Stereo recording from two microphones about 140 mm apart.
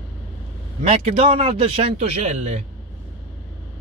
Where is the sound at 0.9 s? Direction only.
45° right (ahead or behind).